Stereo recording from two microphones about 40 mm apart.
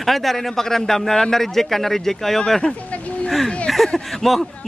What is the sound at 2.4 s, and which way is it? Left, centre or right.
Speech, centre.